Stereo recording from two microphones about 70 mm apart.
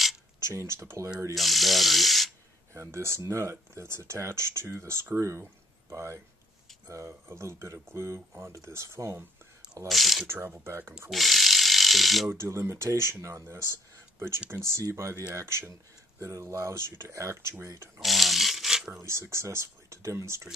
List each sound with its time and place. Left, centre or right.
0.4 s speech: right
1.3 s electric toothbrush: centre
2.7 s speech: right
9.8 s speech: centre
10.2 s speech: right
11.1 s tools: centre
12.3 s speech: right
18.0 s a sound: centre
18.9 s speech: right